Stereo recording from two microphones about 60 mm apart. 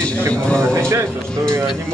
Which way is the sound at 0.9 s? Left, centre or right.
Right.